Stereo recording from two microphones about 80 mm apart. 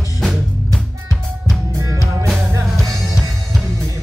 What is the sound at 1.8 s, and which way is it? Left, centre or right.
Music, right.